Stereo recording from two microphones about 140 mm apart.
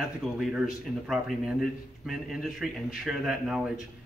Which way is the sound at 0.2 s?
Centre (ahead or behind).